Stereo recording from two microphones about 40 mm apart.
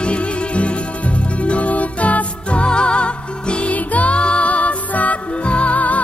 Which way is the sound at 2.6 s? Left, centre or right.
Left.